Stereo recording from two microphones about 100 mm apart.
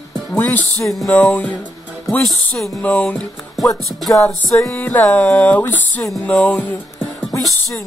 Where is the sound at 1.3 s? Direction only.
15° left (ahead or behind).